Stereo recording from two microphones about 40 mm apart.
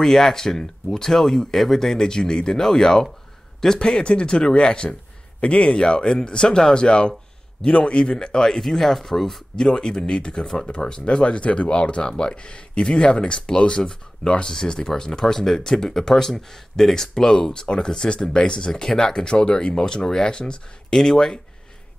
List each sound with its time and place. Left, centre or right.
0.0 s speech: centre